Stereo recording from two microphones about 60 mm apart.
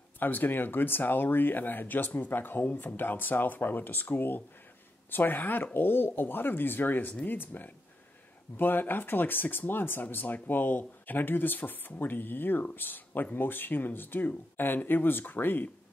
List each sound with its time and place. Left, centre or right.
0.2 s speech: left